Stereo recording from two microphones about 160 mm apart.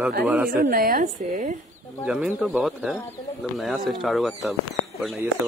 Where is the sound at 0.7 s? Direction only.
65° right (ahead or behind).